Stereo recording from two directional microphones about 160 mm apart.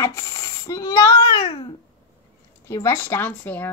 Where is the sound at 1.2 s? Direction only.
30° left (ahead or behind); by 3.7 s 10° left (ahead or behind).